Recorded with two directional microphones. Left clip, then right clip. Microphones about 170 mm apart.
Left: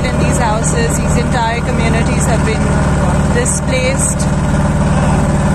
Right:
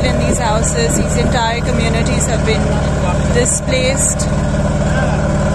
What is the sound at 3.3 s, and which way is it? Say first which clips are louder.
Speech: even; 5° right (ahead or behind).